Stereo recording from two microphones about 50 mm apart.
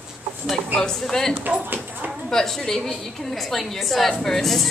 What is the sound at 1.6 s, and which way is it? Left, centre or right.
Clip-clop, right.